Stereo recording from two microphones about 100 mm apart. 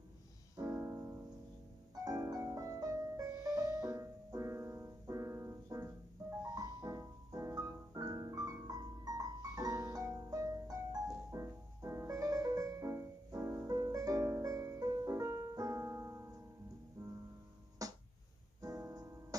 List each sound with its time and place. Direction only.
0.6 s piano: 30° right (ahead or behind)
2.0 s music: 35° right (ahead or behind)
6.5 s piano: 35° right (ahead or behind)
17.0 s music: 35° right (ahead or behind)
18.6 s piano: 35° right (ahead or behind)